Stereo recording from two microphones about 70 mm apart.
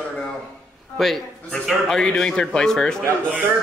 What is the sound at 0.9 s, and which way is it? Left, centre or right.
A man's voice, centre.